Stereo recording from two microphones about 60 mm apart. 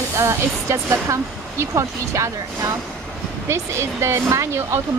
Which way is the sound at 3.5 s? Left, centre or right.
Right.